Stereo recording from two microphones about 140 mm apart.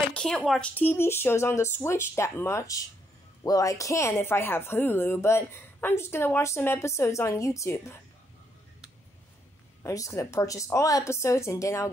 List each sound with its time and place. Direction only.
0.1 s a woman's voice: 5° left (ahead or behind)
9.8 s speech: 25° left (ahead or behind)